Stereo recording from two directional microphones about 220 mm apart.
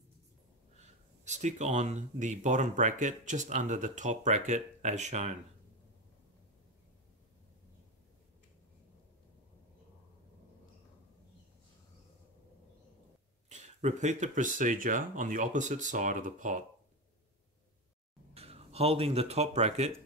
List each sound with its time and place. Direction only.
1.2 s speech: 30° right (ahead or behind)
13.5 s speech: 30° right (ahead or behind)
18.3 s speech: 25° right (ahead or behind)